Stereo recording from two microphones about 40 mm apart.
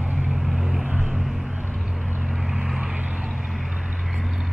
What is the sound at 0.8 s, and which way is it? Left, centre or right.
Vehicle, right.